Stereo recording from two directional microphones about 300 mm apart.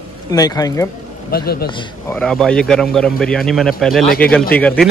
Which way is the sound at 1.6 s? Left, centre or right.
Centre.